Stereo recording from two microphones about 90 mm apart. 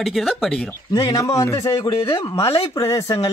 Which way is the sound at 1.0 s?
40° left (ahead or behind).